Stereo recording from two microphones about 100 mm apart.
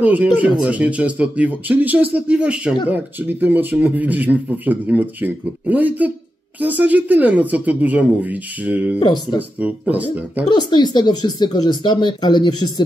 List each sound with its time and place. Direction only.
0.0 s speech: 15° right (ahead or behind)
9.0 s speech: 50° left (ahead or behind)
9.6 s speech: 15° right (ahead or behind)
10.5 s speech: 45° left (ahead or behind)